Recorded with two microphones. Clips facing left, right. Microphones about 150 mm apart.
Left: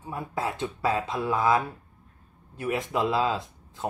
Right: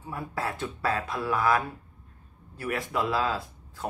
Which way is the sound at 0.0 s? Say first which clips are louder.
Left 2 dB; 20° left (ahead or behind).